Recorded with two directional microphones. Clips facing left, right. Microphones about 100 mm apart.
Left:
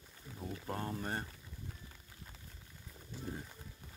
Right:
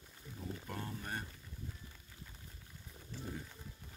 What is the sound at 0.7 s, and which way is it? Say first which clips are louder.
Speech: left 7 dB; 40° left (ahead or behind).